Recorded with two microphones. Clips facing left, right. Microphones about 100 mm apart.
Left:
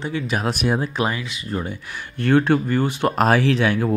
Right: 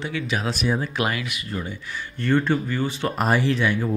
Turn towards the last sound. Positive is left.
turn(degrees=85)